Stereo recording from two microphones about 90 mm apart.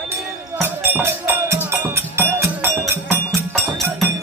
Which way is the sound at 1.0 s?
30° right (ahead or behind).